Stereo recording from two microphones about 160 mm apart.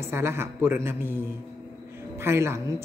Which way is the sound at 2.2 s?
15° right (ahead or behind).